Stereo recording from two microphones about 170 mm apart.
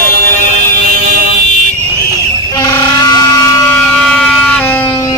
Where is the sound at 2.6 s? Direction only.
25° left (ahead or behind).